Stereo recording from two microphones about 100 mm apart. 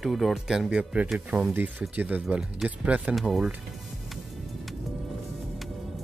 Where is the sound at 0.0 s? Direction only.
Centre (ahead or behind).